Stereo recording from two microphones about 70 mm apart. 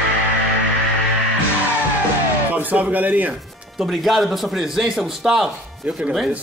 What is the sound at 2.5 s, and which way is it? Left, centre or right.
Speech, right.